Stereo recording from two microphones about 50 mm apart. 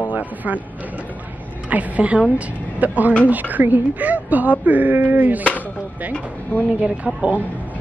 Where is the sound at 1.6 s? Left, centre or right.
Right.